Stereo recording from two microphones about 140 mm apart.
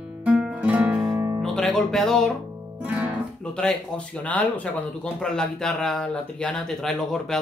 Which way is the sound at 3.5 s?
5° left (ahead or behind).